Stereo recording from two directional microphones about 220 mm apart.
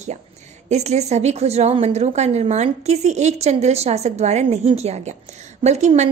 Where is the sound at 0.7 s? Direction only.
30° right (ahead or behind).